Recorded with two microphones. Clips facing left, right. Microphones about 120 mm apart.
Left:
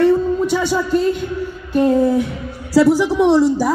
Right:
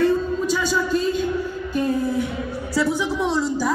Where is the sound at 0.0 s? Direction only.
65° left (ahead or behind).